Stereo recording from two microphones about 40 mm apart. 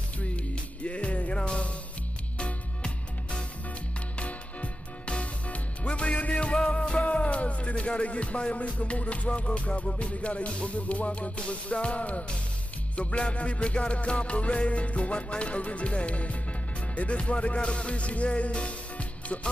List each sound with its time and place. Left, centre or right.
0.8 s music: left